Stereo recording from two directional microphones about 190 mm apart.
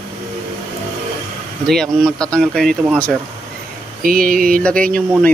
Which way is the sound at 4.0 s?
50° right (ahead or behind).